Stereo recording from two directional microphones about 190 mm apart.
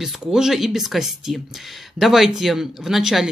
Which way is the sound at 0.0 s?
Centre (ahead or behind).